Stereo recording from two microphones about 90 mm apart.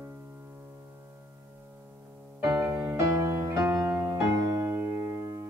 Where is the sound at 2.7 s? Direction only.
35° right (ahead or behind).